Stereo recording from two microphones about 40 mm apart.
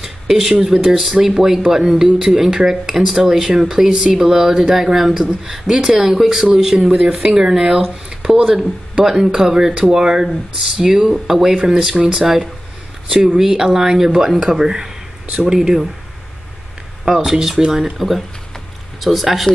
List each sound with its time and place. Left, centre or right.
0.0 s speech: centre
4.7 s speech: centre
17.0 s speech: centre
17.9 s speech: centre